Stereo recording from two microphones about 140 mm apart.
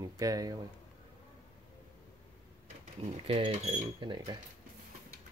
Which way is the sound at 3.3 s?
40° right (ahead or behind).